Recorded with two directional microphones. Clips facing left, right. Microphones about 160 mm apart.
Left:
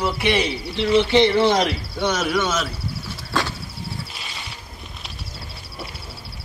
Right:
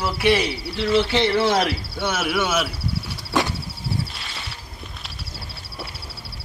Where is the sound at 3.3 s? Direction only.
20° right (ahead or behind).